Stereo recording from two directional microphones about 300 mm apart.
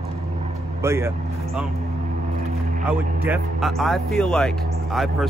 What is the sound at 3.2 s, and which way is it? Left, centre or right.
Speech, centre.